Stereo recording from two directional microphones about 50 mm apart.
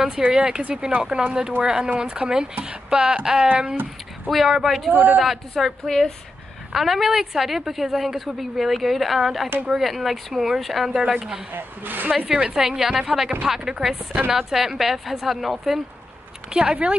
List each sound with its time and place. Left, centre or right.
0.2 s a woman's voice: centre
4.3 s speech: centre
4.9 s a woman's voice: right
5.2 s a woman's voice: centre
11.5 s a woman's voice: right
12.3 s a woman's voice: centre
16.5 s speech: right